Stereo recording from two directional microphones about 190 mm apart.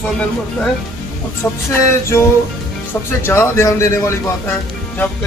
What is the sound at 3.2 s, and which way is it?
Speech, 15° left (ahead or behind).